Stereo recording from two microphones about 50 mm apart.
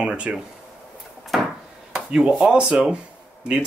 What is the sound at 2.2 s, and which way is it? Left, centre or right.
Speech, centre.